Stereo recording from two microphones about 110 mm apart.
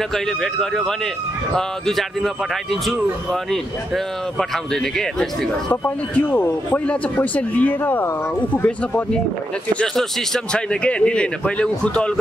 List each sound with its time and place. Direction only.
0.1 s a man's voice: 5° left (ahead or behind)
5.7 s speech: 15° left (ahead or behind)